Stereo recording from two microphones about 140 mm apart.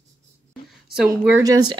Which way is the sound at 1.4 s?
30° right (ahead or behind).